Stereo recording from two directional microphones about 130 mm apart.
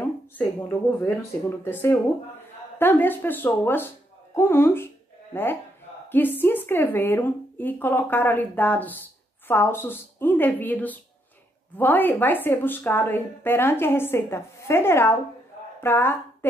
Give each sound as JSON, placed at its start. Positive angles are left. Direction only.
{"t": 0.4, "sound": "a woman's voice", "side_deg": 20}